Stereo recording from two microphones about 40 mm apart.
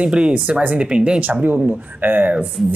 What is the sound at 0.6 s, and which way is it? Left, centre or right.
Speech, right.